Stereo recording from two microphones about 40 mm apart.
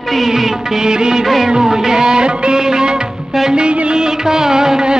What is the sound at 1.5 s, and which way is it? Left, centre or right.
Music, centre.